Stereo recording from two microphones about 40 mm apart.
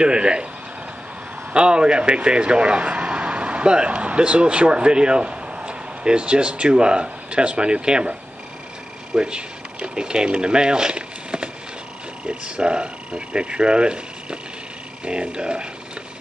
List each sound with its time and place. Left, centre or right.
0.0 s speech: right
1.5 s speech: right
9.1 s a sound: right
12.3 s speech: right